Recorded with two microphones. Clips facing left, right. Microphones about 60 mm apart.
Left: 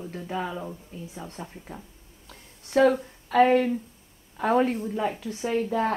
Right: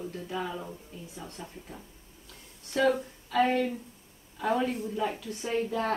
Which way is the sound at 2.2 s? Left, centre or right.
Left.